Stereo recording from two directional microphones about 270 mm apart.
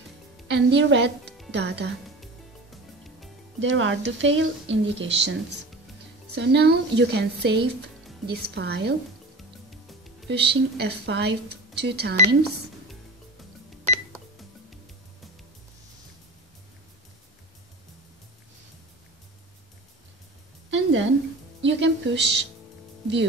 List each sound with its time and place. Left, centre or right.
0.5 s speech: right
3.6 s speech: right
9.7 s music: centre
10.2 s speech: right
20.7 s a sound: right
21.6 s music: right